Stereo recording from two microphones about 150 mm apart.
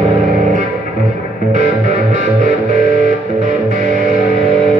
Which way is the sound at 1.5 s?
50° right (ahead or behind).